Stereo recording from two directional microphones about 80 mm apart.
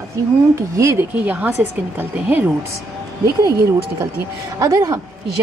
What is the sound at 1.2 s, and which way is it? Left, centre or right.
Speech, centre.